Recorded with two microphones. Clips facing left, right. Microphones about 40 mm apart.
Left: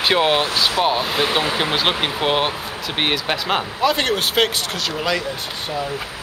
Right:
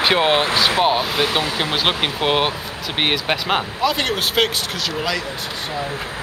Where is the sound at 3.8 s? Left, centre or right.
Centre.